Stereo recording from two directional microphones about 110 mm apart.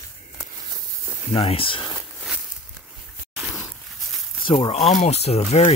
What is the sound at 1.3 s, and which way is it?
Speech, 60° left (ahead or behind).